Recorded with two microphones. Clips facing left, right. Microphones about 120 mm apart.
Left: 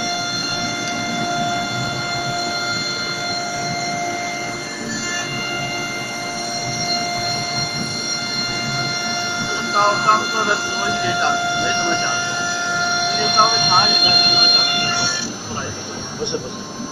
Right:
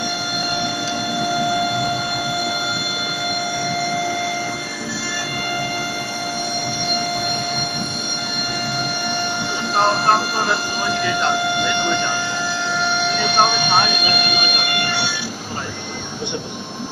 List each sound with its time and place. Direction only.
13.4 s speech: 10° left (ahead or behind)